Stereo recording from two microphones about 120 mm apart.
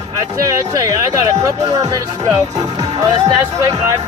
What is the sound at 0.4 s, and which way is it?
Speech, 25° right (ahead or behind).